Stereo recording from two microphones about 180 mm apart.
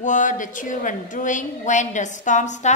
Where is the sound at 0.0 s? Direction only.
45° left (ahead or behind).